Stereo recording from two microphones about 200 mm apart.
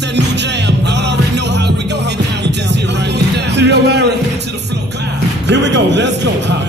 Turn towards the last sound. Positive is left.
turn(degrees=-60)  # may be behind; listen again after turning